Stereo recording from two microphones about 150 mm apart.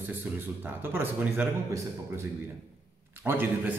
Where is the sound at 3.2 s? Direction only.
15° right (ahead or behind).